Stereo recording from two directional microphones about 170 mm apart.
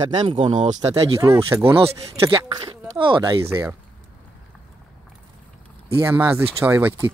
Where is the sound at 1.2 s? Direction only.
15° right (ahead or behind).